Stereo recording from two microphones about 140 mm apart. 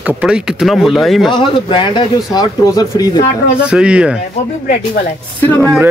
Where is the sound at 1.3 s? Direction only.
35° left (ahead or behind).